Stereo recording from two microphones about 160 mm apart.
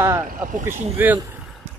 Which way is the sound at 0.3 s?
55° right (ahead or behind).